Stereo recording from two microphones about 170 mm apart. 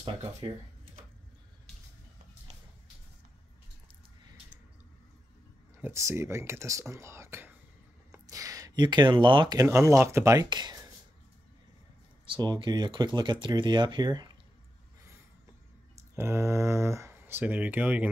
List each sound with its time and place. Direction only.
5.8 s speech: 15° right (ahead or behind)
12.3 s speech: 30° right (ahead or behind)
16.2 s speech: 15° right (ahead or behind)